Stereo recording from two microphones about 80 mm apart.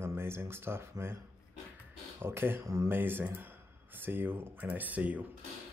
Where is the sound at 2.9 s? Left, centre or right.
Right.